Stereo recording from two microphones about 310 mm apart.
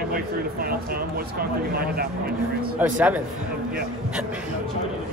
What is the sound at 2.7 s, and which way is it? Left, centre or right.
Speech, centre.